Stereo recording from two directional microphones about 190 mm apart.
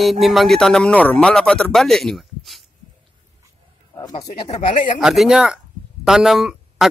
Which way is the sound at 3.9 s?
20° left (ahead or behind).